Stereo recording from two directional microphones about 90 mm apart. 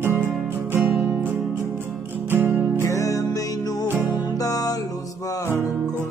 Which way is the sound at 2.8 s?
35° left (ahead or behind).